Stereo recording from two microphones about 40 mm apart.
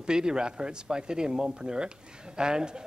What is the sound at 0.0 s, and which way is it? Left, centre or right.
Speech, centre.